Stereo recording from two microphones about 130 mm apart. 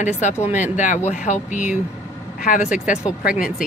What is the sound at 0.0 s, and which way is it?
Speech, 60° left (ahead or behind).